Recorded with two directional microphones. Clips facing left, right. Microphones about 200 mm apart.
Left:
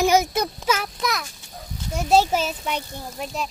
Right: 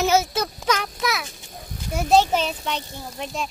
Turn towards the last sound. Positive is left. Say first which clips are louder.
# even
turn(degrees=5)  # may be behind; listen again after turning